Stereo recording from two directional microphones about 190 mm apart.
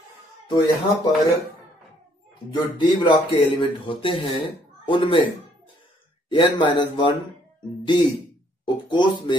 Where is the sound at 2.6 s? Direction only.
25° left (ahead or behind).